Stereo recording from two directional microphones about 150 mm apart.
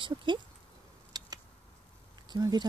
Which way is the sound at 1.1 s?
25° right (ahead or behind).